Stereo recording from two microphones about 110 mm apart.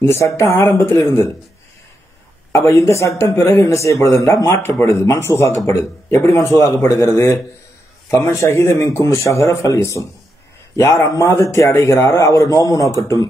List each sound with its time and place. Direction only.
0.0 s speech: 25° left (ahead or behind)
2.5 s speech: 25° left (ahead or behind)